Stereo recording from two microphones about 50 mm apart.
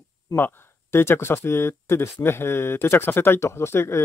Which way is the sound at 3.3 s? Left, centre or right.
Left.